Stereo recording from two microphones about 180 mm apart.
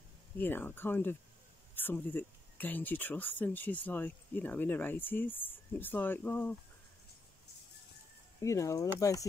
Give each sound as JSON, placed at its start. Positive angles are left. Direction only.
{"t": 0.4, "sound": "speech", "side_deg": 10}
{"t": 8.4, "sound": "speech", "side_deg": 15}